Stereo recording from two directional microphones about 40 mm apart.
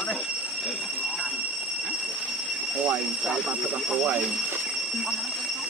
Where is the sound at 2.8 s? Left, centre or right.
Right.